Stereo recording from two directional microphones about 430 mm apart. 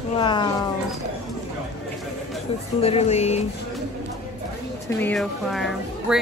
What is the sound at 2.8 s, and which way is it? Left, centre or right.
Speech, centre.